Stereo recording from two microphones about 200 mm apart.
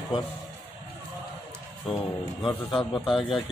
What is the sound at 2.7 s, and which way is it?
Speech, 25° left (ahead or behind).